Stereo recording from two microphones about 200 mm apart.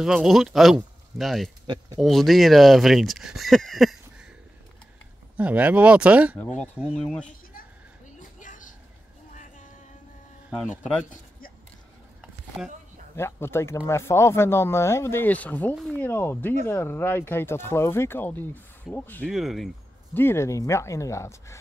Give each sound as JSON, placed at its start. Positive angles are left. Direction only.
{"t": 0.0, "sound": "speech", "side_deg": -5}
{"t": 5.3, "sound": "speech", "side_deg": -5}
{"t": 8.2, "sound": "a sound", "side_deg": 40}
{"t": 10.8, "sound": "speech", "side_deg": 5}
{"t": 12.2, "sound": "a sound", "side_deg": 0}
{"t": 13.1, "sound": "speech", "side_deg": 10}
{"t": 20.2, "sound": "speech", "side_deg": 10}